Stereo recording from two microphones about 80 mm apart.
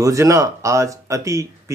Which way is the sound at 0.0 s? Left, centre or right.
Right.